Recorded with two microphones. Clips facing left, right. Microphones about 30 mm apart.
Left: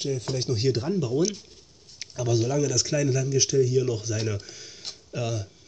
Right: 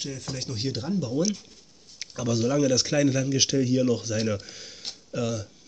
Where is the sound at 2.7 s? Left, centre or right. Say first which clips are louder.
Right 2 dB; right.